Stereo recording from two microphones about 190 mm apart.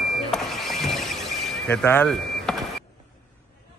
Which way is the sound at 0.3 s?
Centre (ahead or behind).